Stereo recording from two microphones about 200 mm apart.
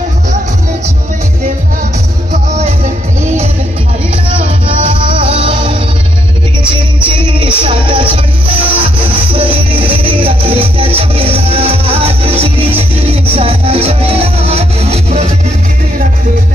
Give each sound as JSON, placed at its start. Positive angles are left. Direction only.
{"t": 5.4, "sound": "music", "side_deg": -25}
{"t": 7.3, "sound": "music", "side_deg": -25}
{"t": 9.7, "sound": "music", "side_deg": -10}
{"t": 9.9, "sound": "music", "side_deg": -25}